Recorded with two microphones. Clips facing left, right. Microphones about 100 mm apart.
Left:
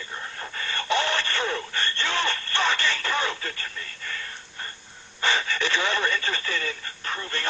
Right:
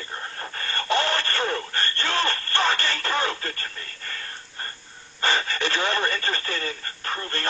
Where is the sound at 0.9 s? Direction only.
45° right (ahead or behind).